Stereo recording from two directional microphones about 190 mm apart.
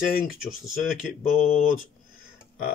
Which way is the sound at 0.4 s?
Centre (ahead or behind).